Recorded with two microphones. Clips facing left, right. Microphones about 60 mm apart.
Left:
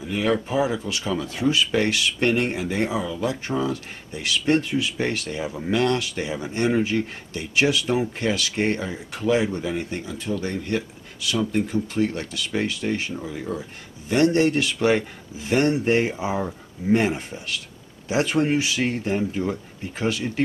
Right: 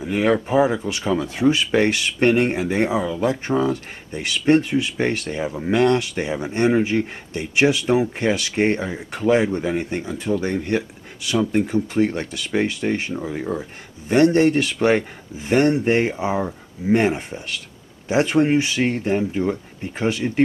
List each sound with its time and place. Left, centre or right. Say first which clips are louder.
0.0 s speech: right 4 dB; right
3.2 s speech: right 5 dB; right
4.3 s speech: right 4 dB; right
8.2 s speech: right 4 dB; right
11.9 s speech: right 4 dB; right